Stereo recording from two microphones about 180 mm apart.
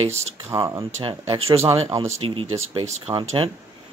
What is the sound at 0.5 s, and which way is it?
Speech, 20° right (ahead or behind).